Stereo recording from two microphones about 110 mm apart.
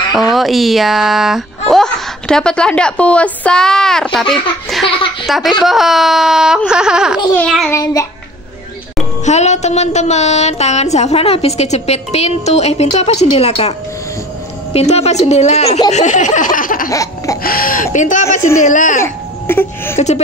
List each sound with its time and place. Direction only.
0.1 s speech: centre (ahead or behind)
4.8 s speech: 55° left (ahead or behind)
5.2 s speech: centre (ahead or behind)
7.3 s speech: 5° left (ahead or behind)
7.7 s speech: 30° left (ahead or behind)
9.2 s a woman's voice: 90° left; by 15.8 s 70° left (ahead or behind)
15.9 s a sound: 90° left
16.9 s a sound: 30° left (ahead or behind)
18.2 s speech: 25° left (ahead or behind)